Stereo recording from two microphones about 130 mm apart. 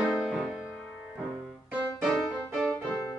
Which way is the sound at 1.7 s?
5° right (ahead or behind).